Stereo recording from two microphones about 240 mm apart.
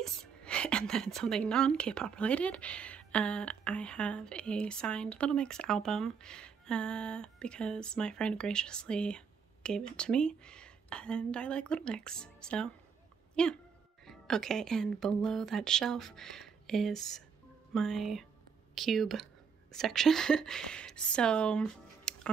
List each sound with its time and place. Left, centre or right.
0.0 s a woman's voice: centre